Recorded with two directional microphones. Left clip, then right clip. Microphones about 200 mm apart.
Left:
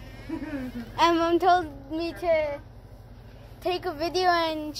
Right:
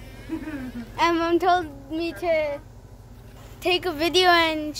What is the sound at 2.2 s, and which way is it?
Speech, 5° right (ahead or behind).